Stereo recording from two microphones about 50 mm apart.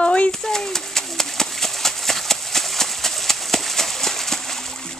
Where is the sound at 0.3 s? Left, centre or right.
Centre.